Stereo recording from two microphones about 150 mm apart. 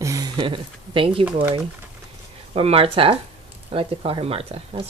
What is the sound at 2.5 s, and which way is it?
Speech, 40° right (ahead or behind).